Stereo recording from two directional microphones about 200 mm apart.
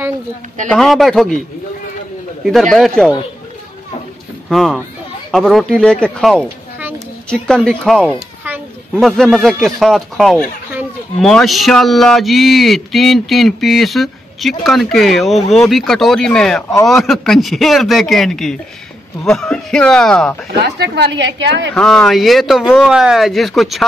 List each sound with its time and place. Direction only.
0.7 s speech: centre (ahead or behind)
2.4 s speech: centre (ahead or behind)
4.5 s speech: centre (ahead or behind)
20.6 s a woman's voice: 55° right (ahead or behind)
21.7 s speech: 5° left (ahead or behind)